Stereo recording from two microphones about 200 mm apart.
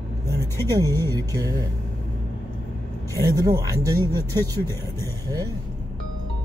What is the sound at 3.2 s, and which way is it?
Speech, 15° right (ahead or behind).